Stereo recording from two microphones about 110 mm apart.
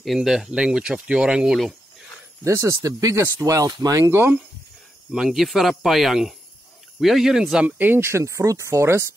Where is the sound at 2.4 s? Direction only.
25° right (ahead or behind).